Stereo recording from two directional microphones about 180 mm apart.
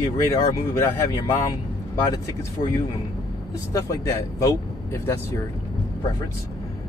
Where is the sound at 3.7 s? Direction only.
20° left (ahead or behind).